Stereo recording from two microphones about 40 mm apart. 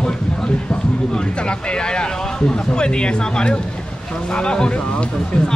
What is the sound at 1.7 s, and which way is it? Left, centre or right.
Speech, left.